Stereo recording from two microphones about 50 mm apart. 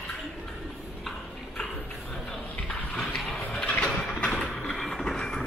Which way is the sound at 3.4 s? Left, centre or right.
Centre.